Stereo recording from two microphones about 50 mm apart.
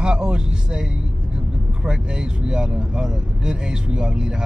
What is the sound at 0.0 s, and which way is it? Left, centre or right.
Speech, centre.